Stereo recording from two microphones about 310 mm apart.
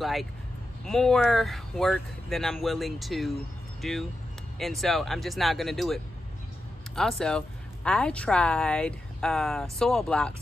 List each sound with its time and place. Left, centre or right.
0.0 s a woman's voice: centre
7.0 s a woman's voice: centre